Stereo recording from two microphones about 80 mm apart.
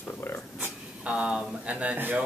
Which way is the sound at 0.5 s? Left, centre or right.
Centre.